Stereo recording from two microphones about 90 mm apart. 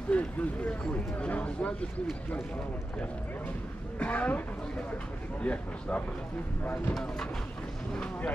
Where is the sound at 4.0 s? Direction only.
15° left (ahead or behind).